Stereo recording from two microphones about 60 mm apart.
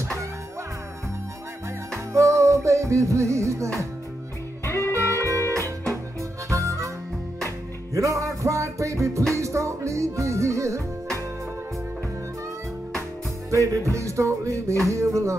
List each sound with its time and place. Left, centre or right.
2.1 s music: right
4.6 s music: left
6.5 s harmonica: right
7.9 s music: right
13.5 s music: right